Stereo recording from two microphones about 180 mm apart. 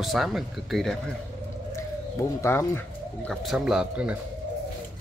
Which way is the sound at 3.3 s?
Centre (ahead or behind).